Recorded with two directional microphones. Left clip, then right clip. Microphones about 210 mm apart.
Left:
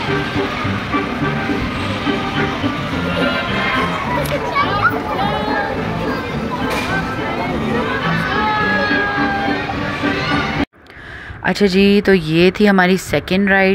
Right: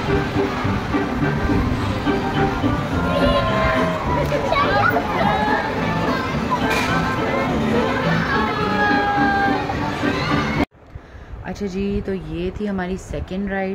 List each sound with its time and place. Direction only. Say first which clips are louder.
11.4 s speech: left 12 dB; 35° left (ahead or behind)